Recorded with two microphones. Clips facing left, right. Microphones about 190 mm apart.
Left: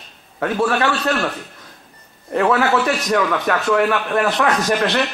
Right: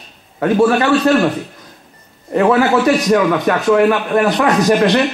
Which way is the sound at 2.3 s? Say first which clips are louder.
Right 4 dB; 15° right (ahead or behind).